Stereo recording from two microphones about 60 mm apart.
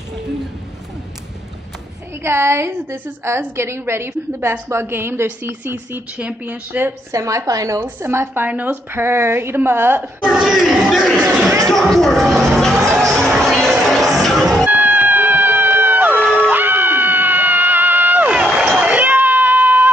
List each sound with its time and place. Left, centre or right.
2.2 s a woman's voice: right
7.1 s a woman's voice: right
10.3 s speech: centre
11.7 s speech: centre
13.0 s music: centre
14.7 s cat: right
16.3 s music: right
18.3 s run: centre
18.9 s cat: right